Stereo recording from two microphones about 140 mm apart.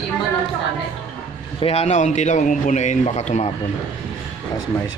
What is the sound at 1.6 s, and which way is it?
A man's voice, 45° left (ahead or behind).